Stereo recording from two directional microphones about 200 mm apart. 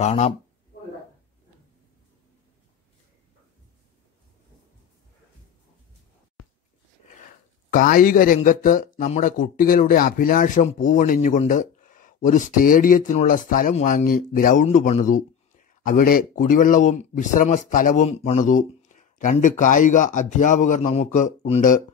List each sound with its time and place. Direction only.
0.0 s speech: 35° left (ahead or behind)
7.7 s speech: 45° left (ahead or behind)